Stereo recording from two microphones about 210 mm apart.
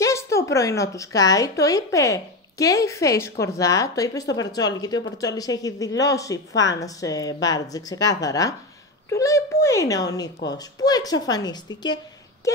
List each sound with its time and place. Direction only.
0.0 s a woman's voice: 15° left (ahead or behind)